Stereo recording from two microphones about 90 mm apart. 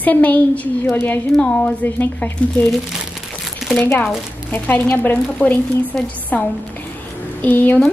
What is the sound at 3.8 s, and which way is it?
A woman's voice, 25° left (ahead or behind).